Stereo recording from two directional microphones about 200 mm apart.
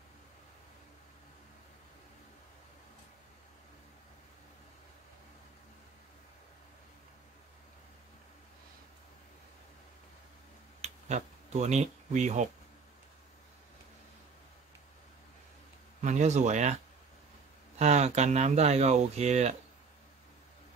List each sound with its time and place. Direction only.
10.8 s a sound: 35° right (ahead or behind)
16.0 s speech: 35° right (ahead or behind)
17.7 s speech: 35° right (ahead or behind)